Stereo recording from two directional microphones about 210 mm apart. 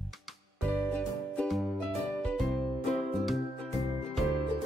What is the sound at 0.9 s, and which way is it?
Music, 5° left (ahead or behind).